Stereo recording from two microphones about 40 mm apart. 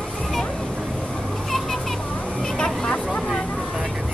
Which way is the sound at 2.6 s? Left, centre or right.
Left.